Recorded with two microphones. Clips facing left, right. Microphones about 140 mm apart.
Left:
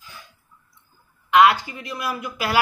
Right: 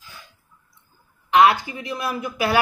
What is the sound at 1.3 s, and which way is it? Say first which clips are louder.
A woman's voice: even; 25° right (ahead or behind).